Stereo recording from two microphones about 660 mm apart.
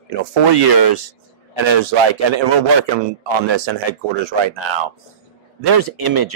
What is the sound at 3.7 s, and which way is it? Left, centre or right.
Speech, right.